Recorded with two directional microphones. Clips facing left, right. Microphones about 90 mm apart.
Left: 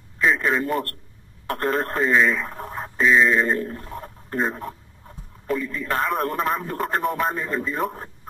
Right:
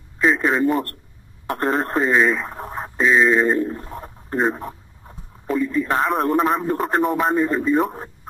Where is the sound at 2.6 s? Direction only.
5° right (ahead or behind).